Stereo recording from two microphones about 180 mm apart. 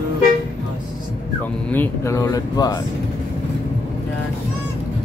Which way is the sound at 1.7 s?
15° left (ahead or behind).